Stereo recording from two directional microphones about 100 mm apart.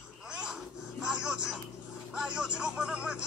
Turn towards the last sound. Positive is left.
turn(degrees=-5)  # may be behind; listen again after turning